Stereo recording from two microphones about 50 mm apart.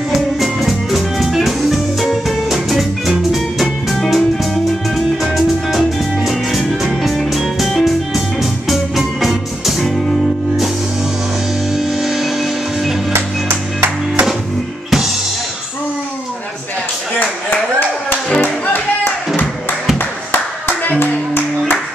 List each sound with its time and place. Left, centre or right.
0.4 s music: centre
11.7 s music: centre
20.2 s clapping: left